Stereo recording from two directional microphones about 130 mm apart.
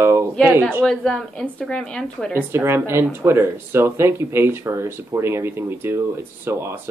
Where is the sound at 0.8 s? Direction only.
5° left (ahead or behind).